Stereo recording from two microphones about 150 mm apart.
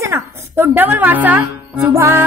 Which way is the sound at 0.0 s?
15° right (ahead or behind).